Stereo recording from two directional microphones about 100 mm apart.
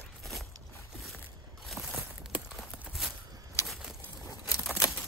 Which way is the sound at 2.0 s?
15° right (ahead or behind).